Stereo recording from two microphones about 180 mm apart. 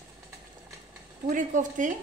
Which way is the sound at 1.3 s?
45° right (ahead or behind).